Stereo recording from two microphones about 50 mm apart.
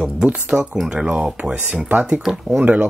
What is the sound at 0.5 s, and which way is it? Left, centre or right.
Speech, centre.